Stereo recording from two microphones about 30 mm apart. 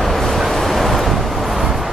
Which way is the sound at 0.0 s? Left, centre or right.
Centre.